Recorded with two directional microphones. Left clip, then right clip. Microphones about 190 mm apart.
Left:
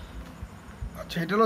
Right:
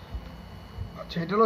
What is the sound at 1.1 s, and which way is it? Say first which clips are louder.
Speech: even; 30° left (ahead or behind).